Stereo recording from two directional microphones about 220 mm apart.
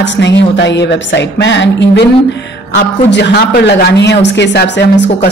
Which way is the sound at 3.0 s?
50° left (ahead or behind).